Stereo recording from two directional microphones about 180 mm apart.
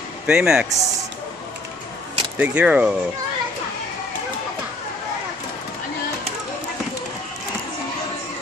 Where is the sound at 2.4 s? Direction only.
5° right (ahead or behind).